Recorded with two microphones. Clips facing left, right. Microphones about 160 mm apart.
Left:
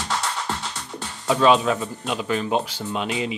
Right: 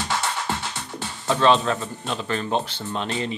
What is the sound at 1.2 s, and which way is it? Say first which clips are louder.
Speech: left 1 dB; 10° left (ahead or behind).